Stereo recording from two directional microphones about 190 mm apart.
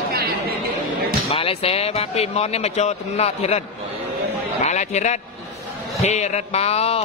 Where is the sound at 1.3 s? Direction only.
30° left (ahead or behind).